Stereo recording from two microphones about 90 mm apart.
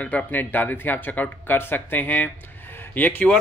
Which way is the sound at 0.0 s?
20° left (ahead or behind).